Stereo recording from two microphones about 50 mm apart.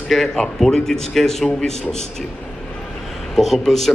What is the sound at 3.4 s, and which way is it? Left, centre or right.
Speech, centre.